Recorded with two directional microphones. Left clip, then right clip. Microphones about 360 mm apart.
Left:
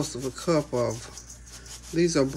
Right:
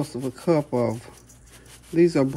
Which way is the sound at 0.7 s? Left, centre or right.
Right.